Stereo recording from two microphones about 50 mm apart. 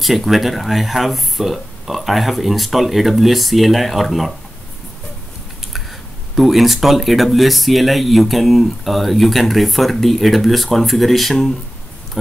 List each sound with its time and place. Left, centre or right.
0.0 s speech: centre
5.7 s speech: centre